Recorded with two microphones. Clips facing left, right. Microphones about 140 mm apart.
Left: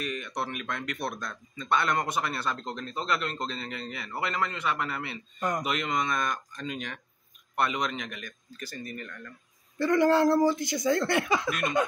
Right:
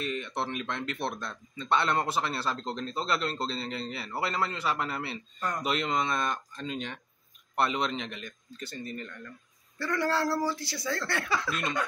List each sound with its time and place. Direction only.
0.0 s a man's voice: 25° right (ahead or behind)
9.8 s speech: 20° left (ahead or behind)